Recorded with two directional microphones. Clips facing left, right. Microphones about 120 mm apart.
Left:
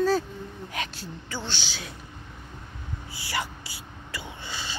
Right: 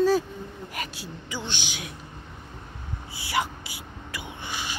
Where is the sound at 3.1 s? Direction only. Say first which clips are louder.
Right 5 dB; 20° right (ahead or behind).